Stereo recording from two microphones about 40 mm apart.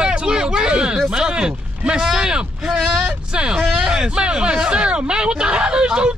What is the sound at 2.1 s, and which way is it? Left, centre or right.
Speech, right.